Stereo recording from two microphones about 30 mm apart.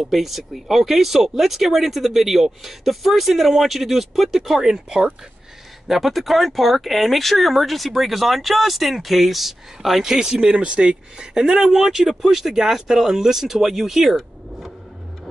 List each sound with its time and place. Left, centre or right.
0.1 s speech: centre
4.8 s speech: right
5.9 s speech: centre
10.1 s speech: centre